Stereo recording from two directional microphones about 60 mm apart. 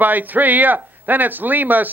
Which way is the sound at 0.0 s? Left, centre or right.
Right.